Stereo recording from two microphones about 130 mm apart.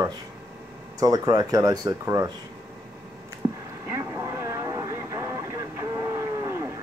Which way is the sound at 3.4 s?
25° right (ahead or behind).